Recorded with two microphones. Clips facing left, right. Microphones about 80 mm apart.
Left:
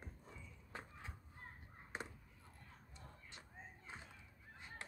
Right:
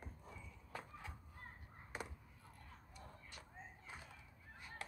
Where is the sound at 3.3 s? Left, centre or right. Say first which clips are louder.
Right 1 dB; left.